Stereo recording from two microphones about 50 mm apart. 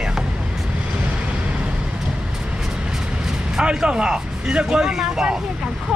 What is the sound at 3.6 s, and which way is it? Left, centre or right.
Speech, centre.